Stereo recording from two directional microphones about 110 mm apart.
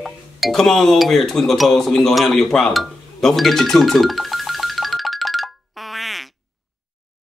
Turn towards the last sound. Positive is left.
turn(degrees=0)  # may be behind; listen again after turning